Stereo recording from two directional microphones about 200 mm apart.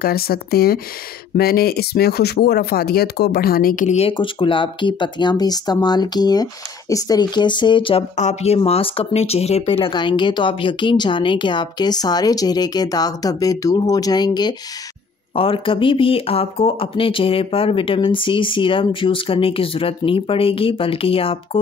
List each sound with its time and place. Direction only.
0.0 s speech: 50° left (ahead or behind); by 21.4 s 30° left (ahead or behind)